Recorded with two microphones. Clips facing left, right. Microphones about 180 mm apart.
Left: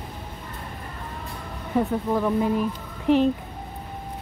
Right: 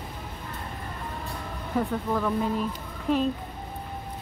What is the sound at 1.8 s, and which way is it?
Speech, 20° left (ahead or behind).